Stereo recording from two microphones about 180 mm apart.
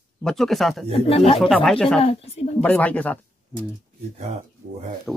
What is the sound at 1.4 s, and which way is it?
Speech, 5° left (ahead or behind).